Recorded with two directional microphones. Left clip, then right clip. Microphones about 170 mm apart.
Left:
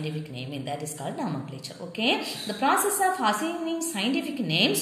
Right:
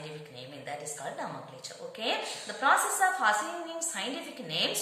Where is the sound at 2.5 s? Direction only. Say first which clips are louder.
Left 1 dB; 20° left (ahead or behind).